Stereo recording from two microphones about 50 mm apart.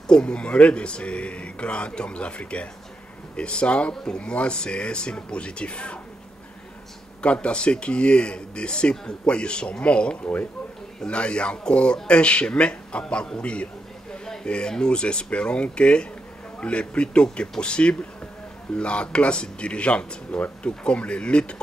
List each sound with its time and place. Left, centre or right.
0.0 s speech: centre
7.2 s speech: left